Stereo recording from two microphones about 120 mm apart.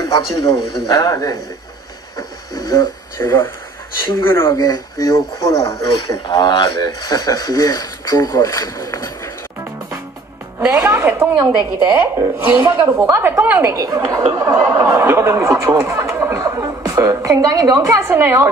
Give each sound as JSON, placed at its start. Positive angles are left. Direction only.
{"t": 0.0, "sound": "a sound", "side_deg": 30}
{"t": 0.8, "sound": "a man's voice", "side_deg": 30}
{"t": 2.1, "sound": "a sound", "side_deg": 30}
{"t": 3.2, "sound": "speech", "side_deg": 20}
{"t": 4.6, "sound": "a man's voice", "side_deg": 30}
{"t": 10.7, "sound": "speech", "side_deg": -20}